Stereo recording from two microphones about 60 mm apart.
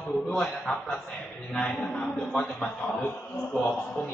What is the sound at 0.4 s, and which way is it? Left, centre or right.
Speech, centre.